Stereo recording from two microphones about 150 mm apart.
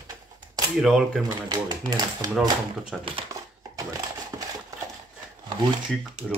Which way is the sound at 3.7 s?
25° right (ahead or behind).